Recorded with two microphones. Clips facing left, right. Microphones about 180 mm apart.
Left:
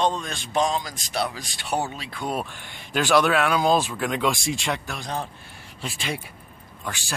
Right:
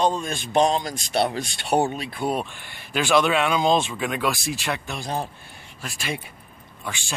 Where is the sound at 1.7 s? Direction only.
25° right (ahead or behind).